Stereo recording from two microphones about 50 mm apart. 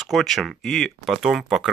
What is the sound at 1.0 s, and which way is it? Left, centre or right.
Speech, centre.